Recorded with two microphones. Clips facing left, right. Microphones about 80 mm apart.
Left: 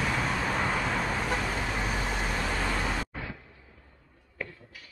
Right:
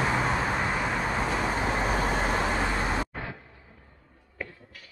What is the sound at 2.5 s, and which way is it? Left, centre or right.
Vehicle, right.